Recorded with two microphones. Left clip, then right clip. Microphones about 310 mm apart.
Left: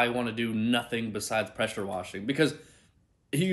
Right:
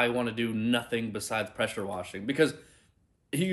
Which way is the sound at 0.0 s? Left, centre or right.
Centre.